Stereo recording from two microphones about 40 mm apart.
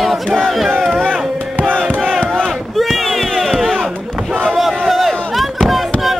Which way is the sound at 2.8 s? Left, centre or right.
Centre.